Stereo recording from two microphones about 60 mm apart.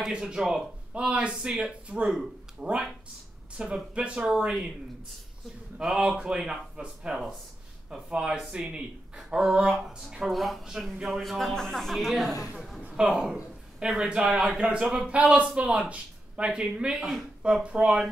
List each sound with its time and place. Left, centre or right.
0.0 s speech: centre
5.8 s speech: centre
11.2 s speech: centre
12.8 s speech: centre